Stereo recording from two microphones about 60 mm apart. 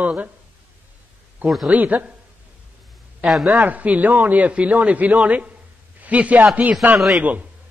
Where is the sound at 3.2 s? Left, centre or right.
Centre.